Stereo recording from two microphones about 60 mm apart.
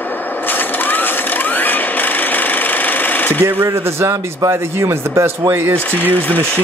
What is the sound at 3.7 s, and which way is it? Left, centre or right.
Speech, right.